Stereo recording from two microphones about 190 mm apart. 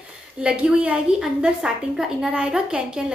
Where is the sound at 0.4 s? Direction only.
5° right (ahead or behind).